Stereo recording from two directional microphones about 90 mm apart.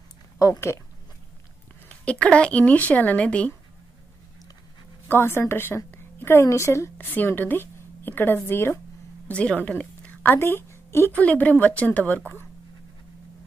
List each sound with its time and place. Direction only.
0.4 s speech: 35° left (ahead or behind)
1.9 s speech: 15° left (ahead or behind)
5.0 s a woman's voice: 25° left (ahead or behind)
9.3 s speech: 15° left (ahead or behind)
9.7 s a sound: 15° left (ahead or behind); by 11.1 s 30° left (ahead or behind)
11.1 s speech: 15° left (ahead or behind)